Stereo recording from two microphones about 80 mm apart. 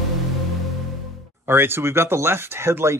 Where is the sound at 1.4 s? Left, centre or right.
Right.